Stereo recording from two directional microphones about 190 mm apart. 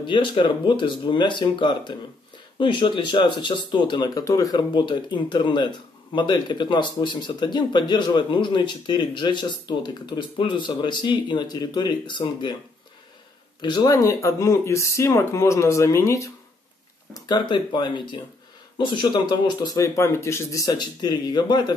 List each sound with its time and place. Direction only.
0.0 s speech: 25° left (ahead or behind)
13.6 s speech: 20° left (ahead or behind)